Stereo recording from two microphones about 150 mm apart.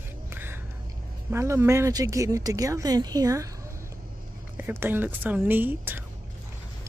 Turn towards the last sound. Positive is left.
turn(degrees=-15)  # may be behind; listen again after turning